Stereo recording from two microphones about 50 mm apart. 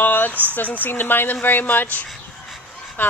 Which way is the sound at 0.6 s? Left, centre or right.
Left.